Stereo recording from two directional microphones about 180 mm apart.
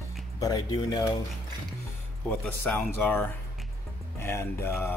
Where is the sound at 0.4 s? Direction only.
20° left (ahead or behind).